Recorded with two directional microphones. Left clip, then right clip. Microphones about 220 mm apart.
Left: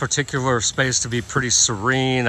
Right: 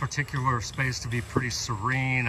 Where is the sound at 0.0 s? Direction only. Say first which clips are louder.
Left 7 dB; centre (ahead or behind).